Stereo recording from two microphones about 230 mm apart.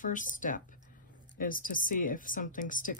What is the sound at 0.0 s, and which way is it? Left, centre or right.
Speech, left.